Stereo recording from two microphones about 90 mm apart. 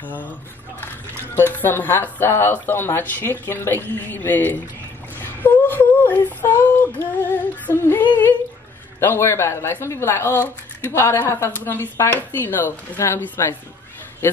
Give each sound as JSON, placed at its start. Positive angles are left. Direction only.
{"t": 0.0, "sound": "speech", "side_deg": 20}
{"t": 1.3, "sound": "speech", "side_deg": 25}